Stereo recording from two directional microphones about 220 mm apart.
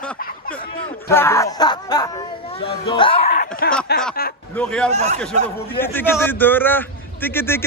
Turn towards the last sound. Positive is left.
turn(degrees=10)  # may be behind; listen again after turning